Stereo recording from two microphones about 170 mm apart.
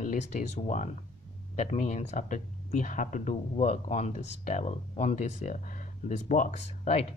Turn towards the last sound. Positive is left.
turn(degrees=50)  # may be behind; listen again after turning